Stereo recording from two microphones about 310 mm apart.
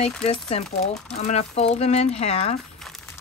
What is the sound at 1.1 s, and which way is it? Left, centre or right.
Speech, centre.